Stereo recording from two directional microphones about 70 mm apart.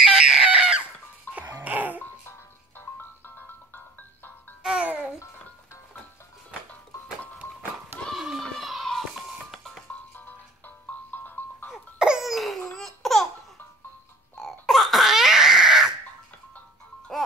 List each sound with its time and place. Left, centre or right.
0.0 s chicken: centre
1.5 s music: right
2.8 s music: left
7.4 s music: left
8.1 s a sound: centre
8.5 s children playing: centre
10.9 s music: left
11.7 s laughter: centre
14.4 s a sound: centre
17.1 s music: centre